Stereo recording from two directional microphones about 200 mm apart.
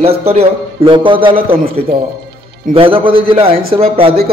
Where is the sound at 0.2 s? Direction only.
30° right (ahead or behind).